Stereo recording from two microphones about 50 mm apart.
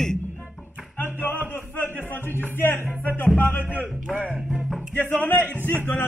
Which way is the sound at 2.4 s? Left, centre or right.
Left.